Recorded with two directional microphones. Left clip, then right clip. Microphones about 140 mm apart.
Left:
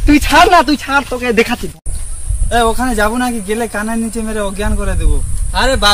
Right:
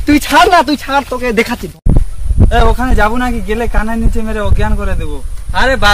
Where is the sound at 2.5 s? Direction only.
5° right (ahead or behind).